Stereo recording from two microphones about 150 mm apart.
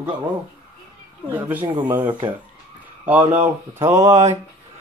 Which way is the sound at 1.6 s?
30° right (ahead or behind).